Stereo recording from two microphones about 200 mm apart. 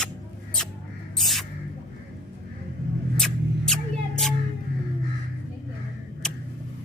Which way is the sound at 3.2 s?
Centre (ahead or behind).